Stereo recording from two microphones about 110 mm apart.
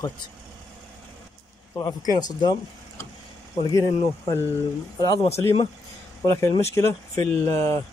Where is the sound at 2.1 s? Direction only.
40° left (ahead or behind).